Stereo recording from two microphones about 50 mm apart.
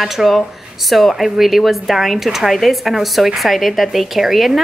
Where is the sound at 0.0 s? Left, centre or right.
Centre.